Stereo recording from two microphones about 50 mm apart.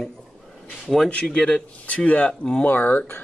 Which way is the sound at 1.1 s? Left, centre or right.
Left.